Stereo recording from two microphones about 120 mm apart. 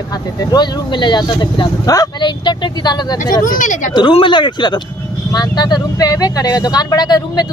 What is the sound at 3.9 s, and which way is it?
Speech, 45° left (ahead or behind).